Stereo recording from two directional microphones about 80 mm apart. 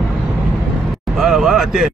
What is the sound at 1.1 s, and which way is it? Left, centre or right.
Speech, centre.